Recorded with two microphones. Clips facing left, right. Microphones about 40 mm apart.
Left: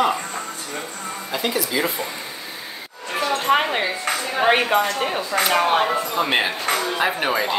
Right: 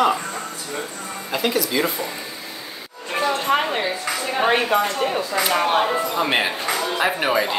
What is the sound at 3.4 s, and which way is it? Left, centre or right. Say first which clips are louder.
Speech: left 1 dB; centre.